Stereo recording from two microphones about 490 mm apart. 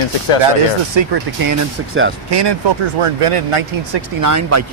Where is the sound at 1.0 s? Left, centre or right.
Right.